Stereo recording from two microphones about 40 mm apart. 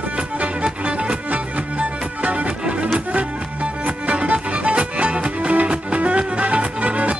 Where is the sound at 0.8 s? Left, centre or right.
Right.